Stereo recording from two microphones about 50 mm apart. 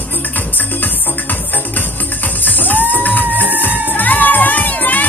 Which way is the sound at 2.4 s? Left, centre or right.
Left.